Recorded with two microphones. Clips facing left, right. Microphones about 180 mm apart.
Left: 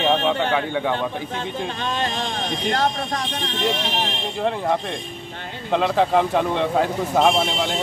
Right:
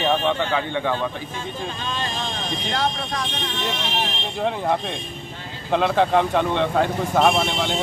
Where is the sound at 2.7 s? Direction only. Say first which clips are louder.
Left 3 dB; 45° left (ahead or behind).